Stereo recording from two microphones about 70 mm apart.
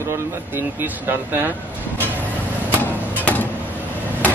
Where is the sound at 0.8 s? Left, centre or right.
Right.